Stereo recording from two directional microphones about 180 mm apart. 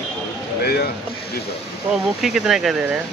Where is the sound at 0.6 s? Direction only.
60° left (ahead or behind).